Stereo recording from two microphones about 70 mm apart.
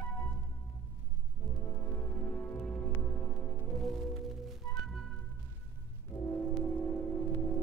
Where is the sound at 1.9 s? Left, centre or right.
Left.